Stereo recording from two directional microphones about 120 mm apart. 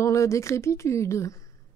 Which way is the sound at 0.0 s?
25° left (ahead or behind).